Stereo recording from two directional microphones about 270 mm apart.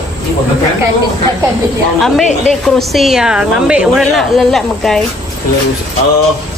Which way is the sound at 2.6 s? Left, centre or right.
Centre.